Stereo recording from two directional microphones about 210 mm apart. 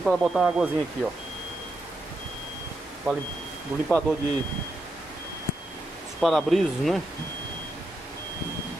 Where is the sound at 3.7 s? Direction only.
Centre (ahead or behind).